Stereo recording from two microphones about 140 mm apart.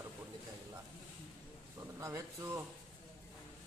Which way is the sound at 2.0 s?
25° right (ahead or behind).